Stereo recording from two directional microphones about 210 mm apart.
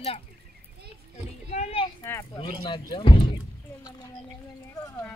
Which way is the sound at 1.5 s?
30° left (ahead or behind).